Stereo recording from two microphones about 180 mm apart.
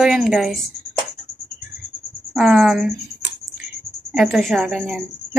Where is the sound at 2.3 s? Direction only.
Centre (ahead or behind).